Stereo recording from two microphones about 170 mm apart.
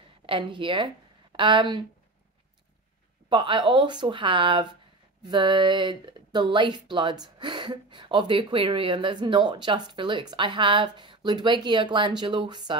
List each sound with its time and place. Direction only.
0.3 s speech: 30° right (ahead or behind)
3.3 s speech: 30° right (ahead or behind)